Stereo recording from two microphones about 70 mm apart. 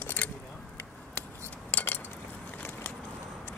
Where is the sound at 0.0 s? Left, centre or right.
Left.